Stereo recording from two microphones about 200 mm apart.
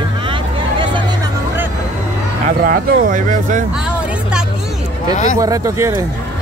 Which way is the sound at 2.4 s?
45° right (ahead or behind).